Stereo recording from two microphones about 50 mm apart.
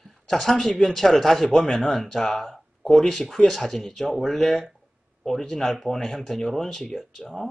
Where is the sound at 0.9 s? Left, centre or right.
Centre.